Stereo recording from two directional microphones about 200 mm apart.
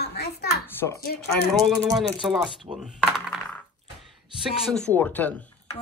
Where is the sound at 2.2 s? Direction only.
10° right (ahead or behind).